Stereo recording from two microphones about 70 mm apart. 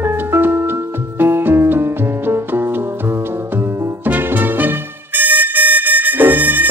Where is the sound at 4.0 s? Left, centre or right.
Right.